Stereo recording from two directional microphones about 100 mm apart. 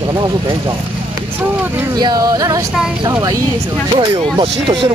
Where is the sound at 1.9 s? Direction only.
45° right (ahead or behind).